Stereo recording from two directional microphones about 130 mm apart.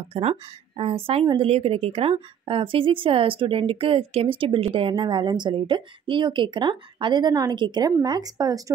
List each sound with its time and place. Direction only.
0.1 s a woman's voice: 50° right (ahead or behind); by 8.7 s 30° right (ahead or behind)